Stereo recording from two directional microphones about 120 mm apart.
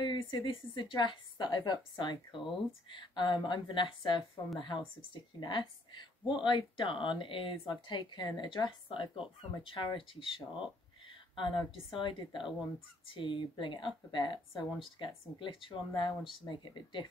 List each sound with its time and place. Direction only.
0.0 s a woman's voice: 40° left (ahead or behind)